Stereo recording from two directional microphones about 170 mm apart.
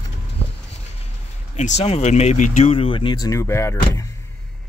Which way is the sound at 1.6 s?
40° left (ahead or behind).